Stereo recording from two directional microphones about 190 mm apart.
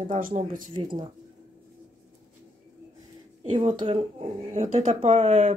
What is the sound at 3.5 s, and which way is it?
Speech, 40° right (ahead or behind).